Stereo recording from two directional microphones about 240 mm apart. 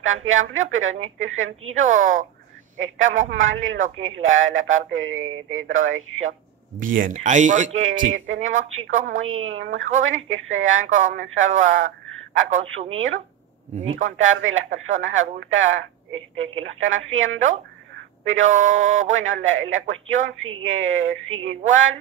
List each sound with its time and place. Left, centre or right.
0.0 s a man's voice: right
1.9 s speech: right
2.8 s a man's voice: right
6.8 s speech: right
8.1 s a man's voice: right